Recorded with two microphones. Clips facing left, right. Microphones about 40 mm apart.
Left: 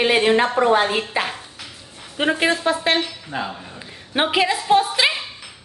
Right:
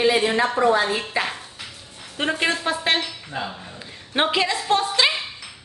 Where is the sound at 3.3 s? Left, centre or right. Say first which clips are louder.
Left 3 dB; left.